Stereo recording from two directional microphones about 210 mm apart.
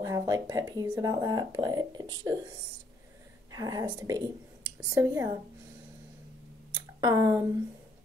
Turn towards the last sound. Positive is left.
turn(degrees=-15)  # may be behind; listen again after turning